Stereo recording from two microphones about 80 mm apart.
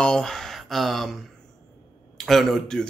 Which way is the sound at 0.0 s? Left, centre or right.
Centre.